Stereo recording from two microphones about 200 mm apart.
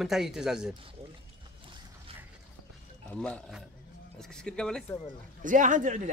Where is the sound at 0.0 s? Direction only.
Centre (ahead or behind).